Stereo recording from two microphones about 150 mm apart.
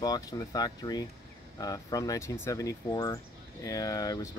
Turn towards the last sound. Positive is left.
turn(degrees=25)  # may be behind; listen again after turning